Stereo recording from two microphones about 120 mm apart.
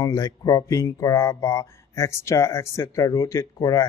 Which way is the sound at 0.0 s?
30° left (ahead or behind).